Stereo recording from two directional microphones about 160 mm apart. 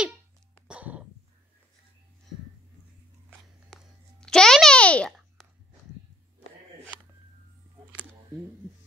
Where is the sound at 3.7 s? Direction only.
5° left (ahead or behind).